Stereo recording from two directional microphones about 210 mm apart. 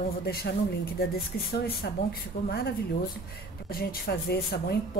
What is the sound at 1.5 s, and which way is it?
Speech, 50° left (ahead or behind).